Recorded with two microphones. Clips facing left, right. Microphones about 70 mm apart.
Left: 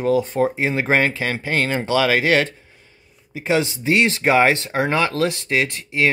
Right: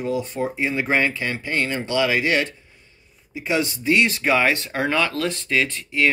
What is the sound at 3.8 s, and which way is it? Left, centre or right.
Speech, left.